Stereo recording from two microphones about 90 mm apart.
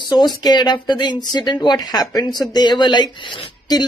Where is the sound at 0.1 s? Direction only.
50° left (ahead or behind).